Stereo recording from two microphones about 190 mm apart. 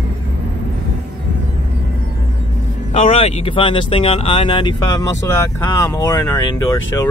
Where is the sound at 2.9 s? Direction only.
30° left (ahead or behind).